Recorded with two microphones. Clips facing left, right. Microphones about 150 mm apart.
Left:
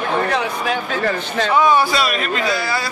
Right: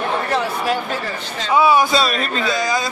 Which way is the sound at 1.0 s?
60° left (ahead or behind).